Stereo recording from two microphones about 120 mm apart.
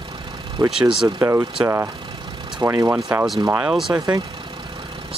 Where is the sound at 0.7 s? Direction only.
5° right (ahead or behind).